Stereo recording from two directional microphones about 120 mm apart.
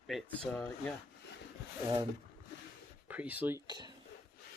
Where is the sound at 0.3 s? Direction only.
15° left (ahead or behind).